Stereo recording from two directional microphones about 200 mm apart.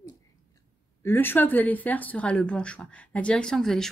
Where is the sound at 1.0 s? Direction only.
10° left (ahead or behind).